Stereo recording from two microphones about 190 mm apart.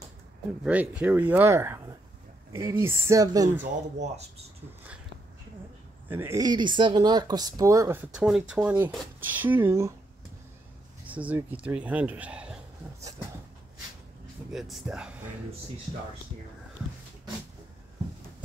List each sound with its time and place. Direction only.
0.7 s speech: 5° right (ahead or behind)
6.0 s speech: 10° right (ahead or behind)
11.1 s speech: 10° right (ahead or behind)
14.5 s speech: centre (ahead or behind)